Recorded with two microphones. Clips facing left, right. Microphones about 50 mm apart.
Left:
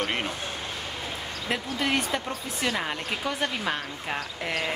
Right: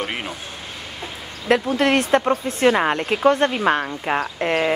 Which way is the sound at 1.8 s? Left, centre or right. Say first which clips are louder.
Right 9 dB; right.